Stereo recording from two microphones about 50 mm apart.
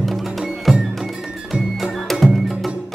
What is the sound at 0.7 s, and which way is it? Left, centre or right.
Music, centre.